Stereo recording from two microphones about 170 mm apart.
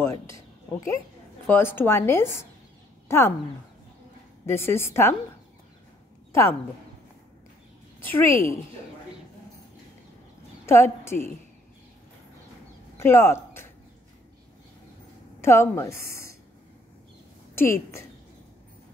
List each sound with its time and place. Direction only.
0.0 s speech: 15° left (ahead or behind)
4.5 s speech: 15° left (ahead or behind)
8.0 s speech: 10° left (ahead or behind)
10.6 s a woman's voice: 15° left (ahead or behind)
12.9 s speech: 15° left (ahead or behind)
15.4 s a woman's voice: 15° left (ahead or behind)
17.6 s speech: 15° left (ahead or behind)